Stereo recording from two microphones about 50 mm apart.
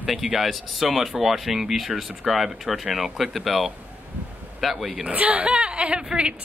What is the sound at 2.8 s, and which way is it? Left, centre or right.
Speech, centre.